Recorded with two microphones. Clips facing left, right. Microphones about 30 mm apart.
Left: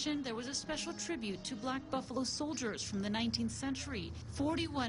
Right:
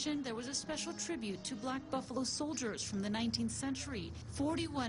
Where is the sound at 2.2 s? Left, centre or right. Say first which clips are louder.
Left 1 dB; centre.